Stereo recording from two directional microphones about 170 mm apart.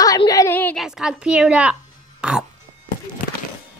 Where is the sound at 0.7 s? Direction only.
5° right (ahead or behind).